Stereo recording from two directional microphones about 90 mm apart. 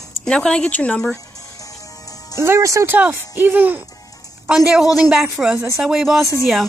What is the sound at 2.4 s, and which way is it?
Speech, 35° right (ahead or behind).